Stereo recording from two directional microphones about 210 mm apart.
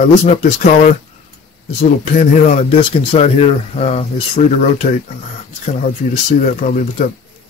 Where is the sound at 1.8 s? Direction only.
30° left (ahead or behind).